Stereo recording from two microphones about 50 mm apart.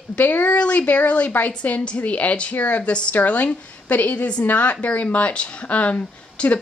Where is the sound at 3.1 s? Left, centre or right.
Left.